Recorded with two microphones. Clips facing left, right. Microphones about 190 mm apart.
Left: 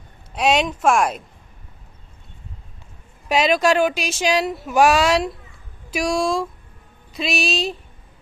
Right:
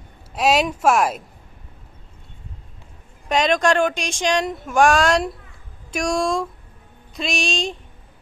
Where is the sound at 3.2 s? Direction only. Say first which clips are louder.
Left 1 dB; 5° left (ahead or behind).